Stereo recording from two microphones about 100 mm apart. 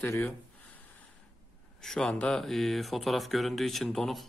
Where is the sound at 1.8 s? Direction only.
5° left (ahead or behind).